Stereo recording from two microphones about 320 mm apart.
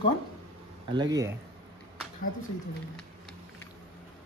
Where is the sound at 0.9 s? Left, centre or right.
Centre.